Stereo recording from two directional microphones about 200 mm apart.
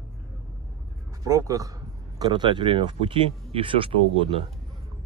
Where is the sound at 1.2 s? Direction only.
15° right (ahead or behind).